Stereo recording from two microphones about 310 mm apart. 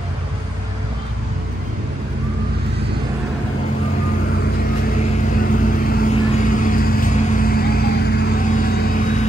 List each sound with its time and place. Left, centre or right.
4.9 s vehicle: left